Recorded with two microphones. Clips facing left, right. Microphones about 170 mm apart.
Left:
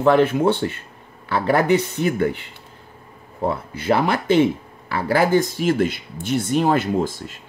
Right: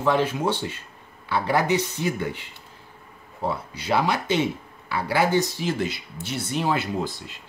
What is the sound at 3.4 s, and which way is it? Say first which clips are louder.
Speech: left 6 dB; 50° left (ahead or behind).